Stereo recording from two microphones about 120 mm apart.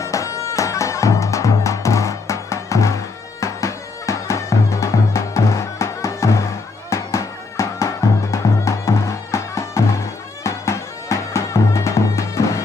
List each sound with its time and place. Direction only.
0.0 s music: 25° left (ahead or behind)